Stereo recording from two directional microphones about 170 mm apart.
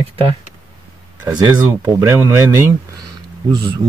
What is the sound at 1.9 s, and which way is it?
Speech, 15° right (ahead or behind).